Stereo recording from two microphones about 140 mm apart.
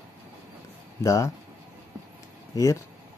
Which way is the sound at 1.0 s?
20° left (ahead or behind).